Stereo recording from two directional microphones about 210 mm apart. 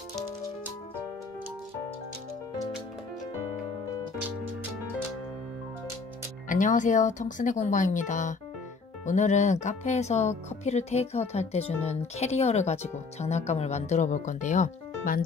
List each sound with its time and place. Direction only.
6.5 s speech: 35° left (ahead or behind)